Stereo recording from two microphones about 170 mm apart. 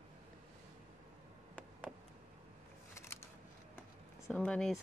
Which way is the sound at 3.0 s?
15° left (ahead or behind).